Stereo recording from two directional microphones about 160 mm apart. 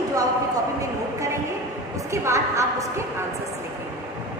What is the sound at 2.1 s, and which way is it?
Speech, 20° right (ahead or behind).